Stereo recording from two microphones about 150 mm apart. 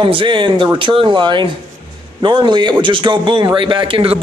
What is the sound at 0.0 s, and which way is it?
A man's voice, 35° right (ahead or behind).